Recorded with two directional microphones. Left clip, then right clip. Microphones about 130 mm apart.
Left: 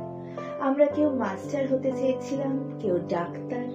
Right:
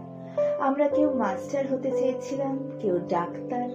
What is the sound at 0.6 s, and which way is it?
Speech, 40° left (ahead or behind).